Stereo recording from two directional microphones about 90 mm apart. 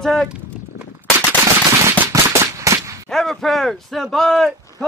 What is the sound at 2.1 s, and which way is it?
Gunshot, 35° right (ahead or behind).